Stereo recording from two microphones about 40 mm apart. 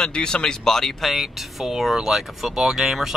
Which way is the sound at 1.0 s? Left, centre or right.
Centre.